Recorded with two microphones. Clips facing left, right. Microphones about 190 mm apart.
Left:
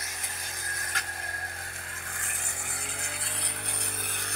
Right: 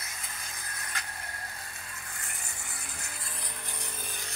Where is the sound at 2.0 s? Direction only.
55° left (ahead or behind).